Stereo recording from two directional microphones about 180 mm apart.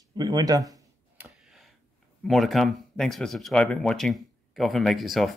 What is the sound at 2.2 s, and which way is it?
Speech, centre (ahead or behind).